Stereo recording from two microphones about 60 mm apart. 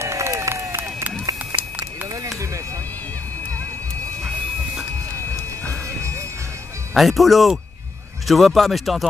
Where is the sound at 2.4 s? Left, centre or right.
Right.